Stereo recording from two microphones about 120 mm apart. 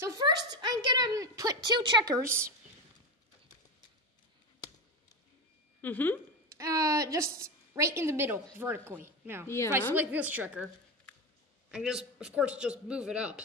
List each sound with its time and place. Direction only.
0.2 s a woman's voice: 35° right (ahead or behind)
5.8 s speech: 15° left (ahead or behind)
6.5 s a woman's voice: 25° right (ahead or behind)
11.7 s a man's voice: 5° right (ahead or behind)